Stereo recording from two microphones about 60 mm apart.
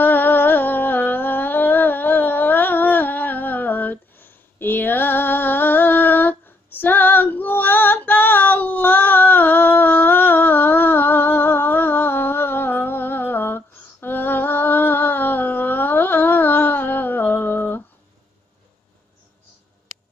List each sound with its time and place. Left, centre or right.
0.0 s music: left